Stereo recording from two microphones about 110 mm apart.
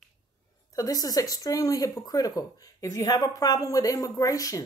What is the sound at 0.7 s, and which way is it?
Speech, 35° left (ahead or behind).